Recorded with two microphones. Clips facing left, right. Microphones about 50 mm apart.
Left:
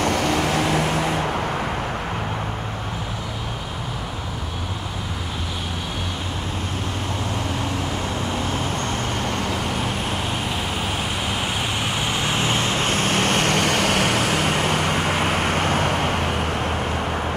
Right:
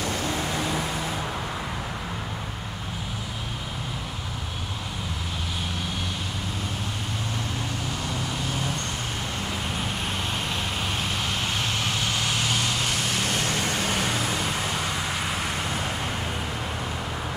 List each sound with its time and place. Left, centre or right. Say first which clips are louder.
0.0 s vehicle: left 7 dB; left
11.4 s vehicle: left 3 dB; centre; by 16.7 s left